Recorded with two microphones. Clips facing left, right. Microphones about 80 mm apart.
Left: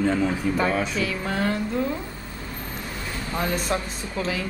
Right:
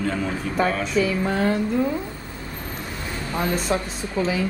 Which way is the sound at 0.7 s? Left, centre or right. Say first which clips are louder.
Right 3 dB; centre.